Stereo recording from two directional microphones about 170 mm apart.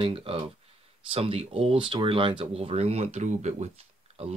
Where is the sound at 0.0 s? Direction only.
35° right (ahead or behind).